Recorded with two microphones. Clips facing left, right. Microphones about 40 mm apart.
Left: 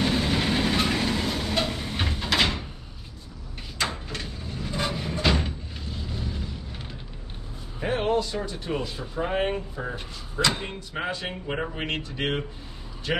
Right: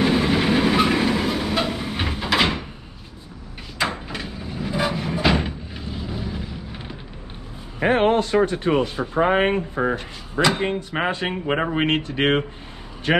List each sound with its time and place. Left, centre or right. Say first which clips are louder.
0.0 s train: right 6 dB; centre
4.1 s vehicle: right 4 dB; centre
7.8 s speech: right 7 dB; right